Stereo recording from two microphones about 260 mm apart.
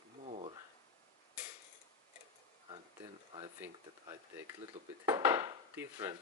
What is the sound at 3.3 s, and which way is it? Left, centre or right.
Speech, centre.